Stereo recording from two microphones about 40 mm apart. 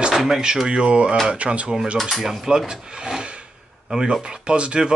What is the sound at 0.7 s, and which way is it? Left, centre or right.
Speech, right.